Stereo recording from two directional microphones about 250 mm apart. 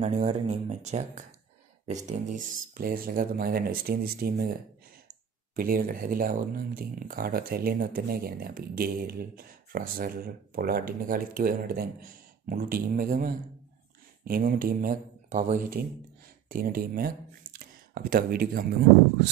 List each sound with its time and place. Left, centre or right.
0.0 s speech: right
5.6 s speech: right